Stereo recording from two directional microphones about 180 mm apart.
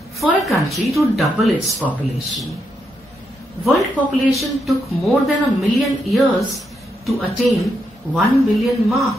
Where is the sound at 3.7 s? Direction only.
Centre (ahead or behind).